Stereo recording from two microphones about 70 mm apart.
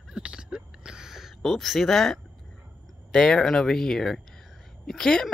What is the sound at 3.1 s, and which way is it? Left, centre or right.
Speech, centre.